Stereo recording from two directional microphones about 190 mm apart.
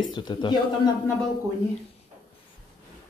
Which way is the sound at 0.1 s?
25° left (ahead or behind).